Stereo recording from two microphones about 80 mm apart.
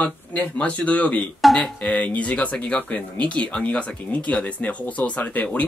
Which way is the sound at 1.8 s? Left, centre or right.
Centre.